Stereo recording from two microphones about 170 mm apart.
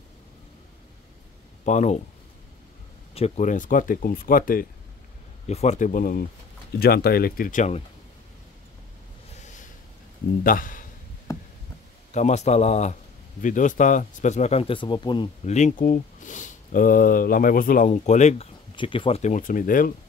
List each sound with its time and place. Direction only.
1.6 s speech: 45° left (ahead or behind)
3.2 s speech: 40° left (ahead or behind); by 4.6 s 55° left (ahead or behind)
5.5 s speech: 40° left (ahead or behind)
6.8 s speech: 65° left (ahead or behind); by 7.8 s 45° left (ahead or behind)
9.4 s a sound: 45° left (ahead or behind)
10.4 s speech: 55° left (ahead or behind)
11.3 s a sound: 20° left (ahead or behind)
12.1 s speech: 45° left (ahead or behind)
15.4 s speech: 45° left (ahead or behind)
18.8 s speech: 30° left (ahead or behind); by 19.9 s 55° left (ahead or behind)